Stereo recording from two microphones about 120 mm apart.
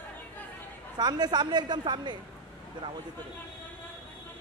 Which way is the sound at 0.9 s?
35° right (ahead or behind).